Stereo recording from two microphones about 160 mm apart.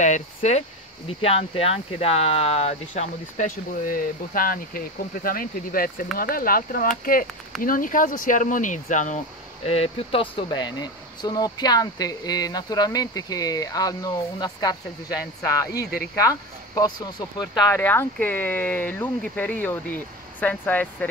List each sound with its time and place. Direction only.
0.0 s speech: 45° left (ahead or behind)
9.7 s speech: 35° left (ahead or behind)
10.3 s speech: 25° left (ahead or behind)
17.8 s speech: 10° left (ahead or behind)